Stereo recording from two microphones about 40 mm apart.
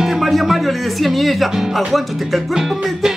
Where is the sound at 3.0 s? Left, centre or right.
Centre.